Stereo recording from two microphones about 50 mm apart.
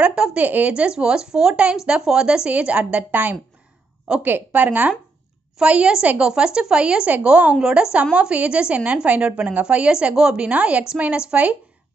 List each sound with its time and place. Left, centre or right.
0.0 s a sound: right
0.4 s a woman's voice: right
5.6 s a woman's voice: centre
7.6 s a woman's voice: centre